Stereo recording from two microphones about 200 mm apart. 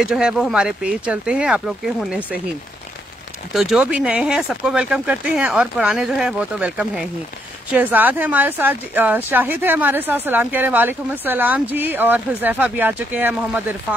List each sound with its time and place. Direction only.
0.0 s speech: 5° right (ahead or behind)
3.5 s a woman's voice: 5° right (ahead or behind)